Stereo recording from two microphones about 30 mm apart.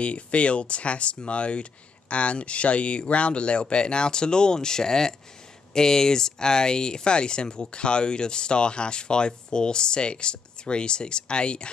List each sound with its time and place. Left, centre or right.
0.0 s speech: left